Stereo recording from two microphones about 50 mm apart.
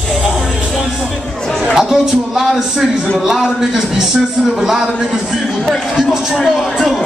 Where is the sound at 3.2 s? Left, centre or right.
Centre.